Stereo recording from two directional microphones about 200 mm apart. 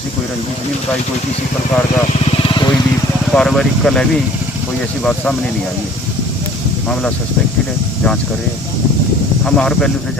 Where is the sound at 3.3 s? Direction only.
5° left (ahead or behind).